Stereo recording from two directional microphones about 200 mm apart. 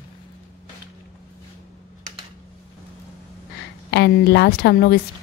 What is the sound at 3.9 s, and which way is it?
A woman's voice, 55° left (ahead or behind).